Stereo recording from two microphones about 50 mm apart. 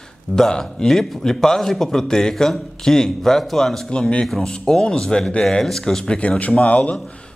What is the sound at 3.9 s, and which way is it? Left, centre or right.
A man's voice, left.